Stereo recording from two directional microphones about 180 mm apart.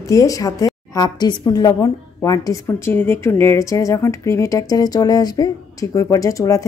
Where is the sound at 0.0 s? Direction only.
20° left (ahead or behind).